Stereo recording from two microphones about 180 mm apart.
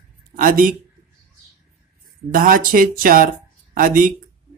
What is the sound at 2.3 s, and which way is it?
Speech, 50° right (ahead or behind).